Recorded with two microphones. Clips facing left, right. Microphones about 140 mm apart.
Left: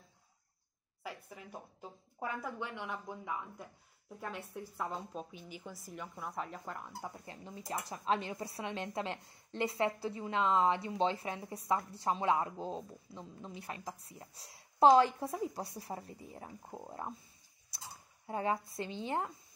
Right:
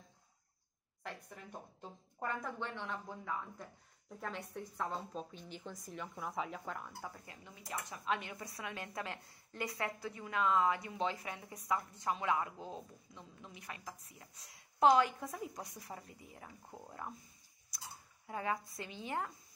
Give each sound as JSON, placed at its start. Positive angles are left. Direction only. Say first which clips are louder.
{"t": 1.0, "sound": "a woman's voice", "louder": "left 2 dB", "side_deg": 5}
{"t": 7.0, "sound": "speech", "louder": "left 3 dB", "side_deg": 20}
{"t": 7.4, "sound": "speech", "louder": "left 4 dB", "side_deg": 35}